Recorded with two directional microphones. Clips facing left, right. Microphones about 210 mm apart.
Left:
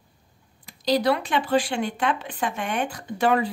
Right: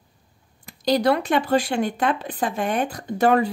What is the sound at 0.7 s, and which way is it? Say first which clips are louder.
Speech: right 2 dB; 45° right (ahead or behind).